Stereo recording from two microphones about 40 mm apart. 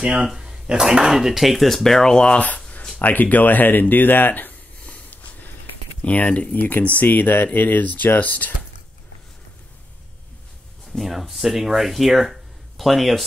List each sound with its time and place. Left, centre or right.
0.0 s speech: right; by 2.2 s centre
2.2 s speech: left
6.0 s speech: left
6.5 s speech: left
10.9 s speech: centre